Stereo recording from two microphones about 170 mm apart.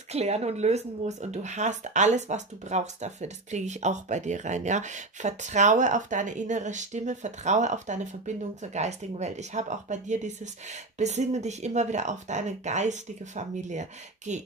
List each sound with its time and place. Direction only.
0.1 s speech: 40° right (ahead or behind)